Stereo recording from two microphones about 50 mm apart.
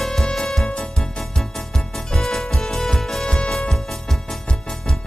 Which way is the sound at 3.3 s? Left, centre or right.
Centre.